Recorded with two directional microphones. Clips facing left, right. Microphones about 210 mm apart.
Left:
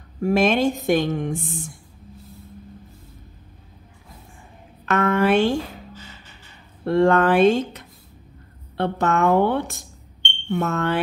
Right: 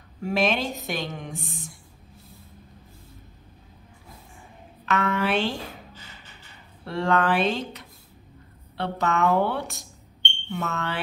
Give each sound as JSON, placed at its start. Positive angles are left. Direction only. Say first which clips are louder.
{"t": 0.2, "sound": "a woman's voice", "louder": "left 6 dB", "side_deg": 50}
{"t": 4.8, "sound": "a woman's voice", "louder": "left 6 dB", "side_deg": 50}
{"t": 6.8, "sound": "a woman's voice", "louder": "left 7 dB", "side_deg": 50}